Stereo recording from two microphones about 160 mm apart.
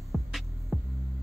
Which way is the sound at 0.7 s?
Centre (ahead or behind).